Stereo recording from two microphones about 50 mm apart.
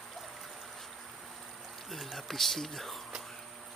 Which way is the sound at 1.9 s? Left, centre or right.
Centre.